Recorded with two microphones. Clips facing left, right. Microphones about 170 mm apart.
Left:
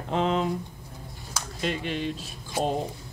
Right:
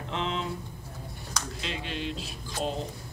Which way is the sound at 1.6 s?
50° left (ahead or behind).